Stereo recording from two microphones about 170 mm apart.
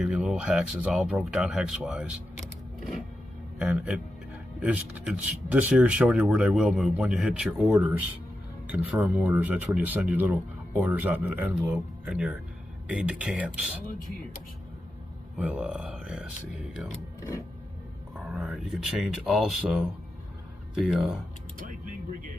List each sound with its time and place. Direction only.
0.0 s speech: 5° right (ahead or behind)
3.5 s a man's voice: 5° right (ahead or behind)
15.3 s speech: 5° right (ahead or behind)
18.1 s speech: 5° right (ahead or behind)
21.5 s speech: 55° right (ahead or behind)